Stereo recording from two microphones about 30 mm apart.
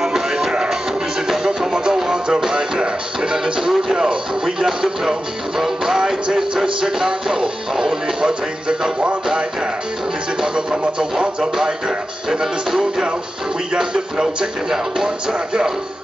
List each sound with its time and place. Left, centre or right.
0.0 s music: centre
3.6 s speech: centre
4.6 s music: centre
6.2 s music: right
7.8 s speech: right
8.6 s music: right
10.4 s speech: right
12.3 s music: centre
13.7 s speech: centre